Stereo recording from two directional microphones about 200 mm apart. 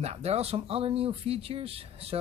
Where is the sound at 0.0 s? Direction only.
30° right (ahead or behind).